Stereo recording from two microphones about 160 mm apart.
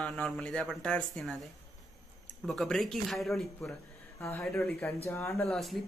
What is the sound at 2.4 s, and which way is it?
A man's voice, centre (ahead or behind).